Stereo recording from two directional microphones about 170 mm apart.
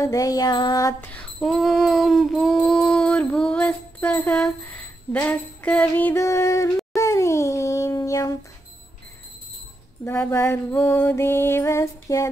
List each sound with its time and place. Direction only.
0.0 s music: 20° left (ahead or behind)
1.1 s a sound: centre (ahead or behind); by 8.4 s 20° left (ahead or behind)
10.0 s music: 15° left (ahead or behind)